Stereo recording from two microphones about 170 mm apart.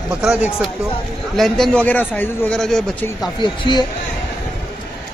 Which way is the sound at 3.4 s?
25° left (ahead or behind).